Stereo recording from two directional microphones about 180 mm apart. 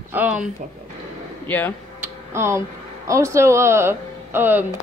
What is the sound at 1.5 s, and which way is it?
Speech, 10° left (ahead or behind).